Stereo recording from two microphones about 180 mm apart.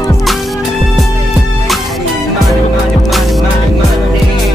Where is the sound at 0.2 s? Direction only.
Centre (ahead or behind).